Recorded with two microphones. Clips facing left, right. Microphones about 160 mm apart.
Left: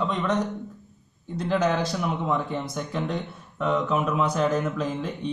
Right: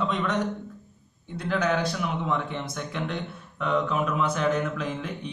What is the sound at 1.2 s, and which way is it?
Speech, 35° left (ahead or behind).